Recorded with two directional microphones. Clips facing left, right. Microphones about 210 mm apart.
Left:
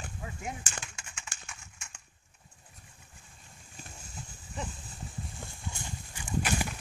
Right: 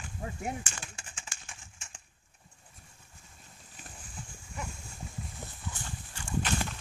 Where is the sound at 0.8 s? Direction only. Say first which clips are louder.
Left 2 dB; 35° right (ahead or behind).